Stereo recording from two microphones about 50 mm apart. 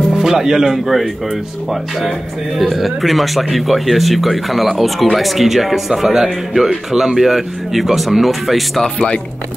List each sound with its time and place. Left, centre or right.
0.1 s speech: centre
2.6 s speech: centre
8.8 s speech: left